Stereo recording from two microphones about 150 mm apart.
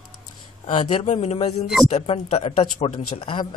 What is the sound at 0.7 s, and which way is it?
A man's voice, 45° left (ahead or behind).